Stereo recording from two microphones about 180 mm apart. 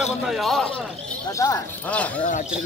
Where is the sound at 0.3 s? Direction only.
Centre (ahead or behind).